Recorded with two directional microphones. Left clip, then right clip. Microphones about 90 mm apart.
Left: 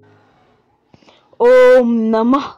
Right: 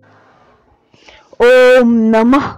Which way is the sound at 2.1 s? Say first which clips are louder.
Right 3 dB; 75° right (ahead or behind).